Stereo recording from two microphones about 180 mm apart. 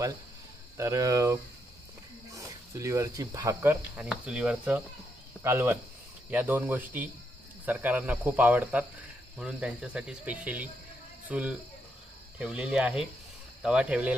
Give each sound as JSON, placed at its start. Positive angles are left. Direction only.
{"t": 0.7, "sound": "speech", "side_deg": -15}